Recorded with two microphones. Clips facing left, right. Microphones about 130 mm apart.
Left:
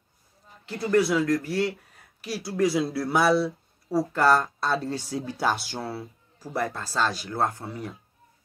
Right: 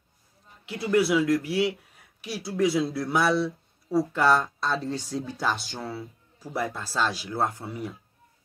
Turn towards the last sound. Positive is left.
turn(degrees=-5)  # may be behind; listen again after turning